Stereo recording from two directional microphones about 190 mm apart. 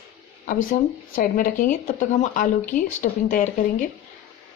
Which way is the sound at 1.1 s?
45° left (ahead or behind).